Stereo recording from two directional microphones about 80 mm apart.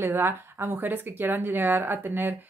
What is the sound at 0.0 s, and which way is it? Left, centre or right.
Speech, right.